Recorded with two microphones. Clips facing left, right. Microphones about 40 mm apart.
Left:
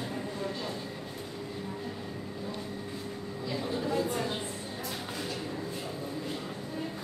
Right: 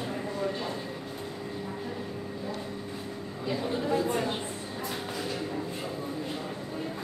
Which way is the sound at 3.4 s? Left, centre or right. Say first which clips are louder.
Right 3 dB; right.